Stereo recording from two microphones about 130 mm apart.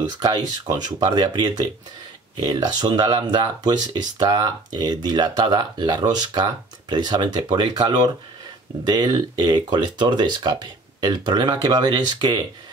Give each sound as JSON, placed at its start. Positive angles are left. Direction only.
{"t": 0.8, "sound": "speech", "side_deg": -35}